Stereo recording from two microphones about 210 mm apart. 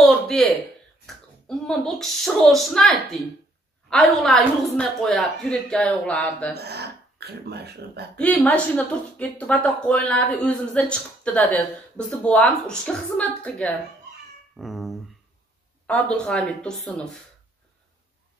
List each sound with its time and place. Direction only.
0.0 s a sound: centre (ahead or behind)
1.0 s a woman's voice: centre (ahead or behind)
6.5 s speech: 50° right (ahead or behind)
8.2 s a woman's voice: 10° left (ahead or behind)